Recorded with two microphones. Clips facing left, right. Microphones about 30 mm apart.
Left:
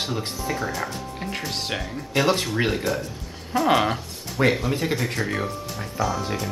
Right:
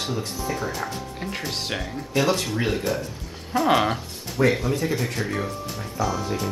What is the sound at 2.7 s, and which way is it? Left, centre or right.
Speech, centre.